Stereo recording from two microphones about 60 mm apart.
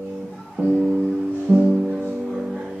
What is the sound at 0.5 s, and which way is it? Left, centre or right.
Music, centre.